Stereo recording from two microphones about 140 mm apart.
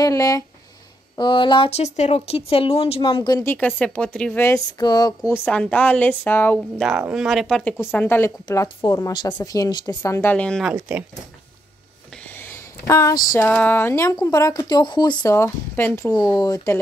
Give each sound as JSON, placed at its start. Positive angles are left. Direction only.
{"t": 0.0, "sound": "speech", "side_deg": 25}
{"t": 3.4, "sound": "a woman's voice", "side_deg": 10}
{"t": 4.5, "sound": "speech", "side_deg": 30}
{"t": 5.3, "sound": "a woman's voice", "side_deg": 10}
{"t": 6.8, "sound": "speech", "side_deg": -5}
{"t": 9.1, "sound": "speech", "side_deg": 30}
{"t": 10.3, "sound": "a woman's voice", "side_deg": 5}
{"t": 10.7, "sound": "speech", "side_deg": -10}
{"t": 12.4, "sound": "a sound", "side_deg": 20}
{"t": 13.4, "sound": "a woman's voice", "side_deg": 10}
{"t": 15.3, "sound": "a woman's voice", "side_deg": 15}
{"t": 16.1, "sound": "speech", "side_deg": 30}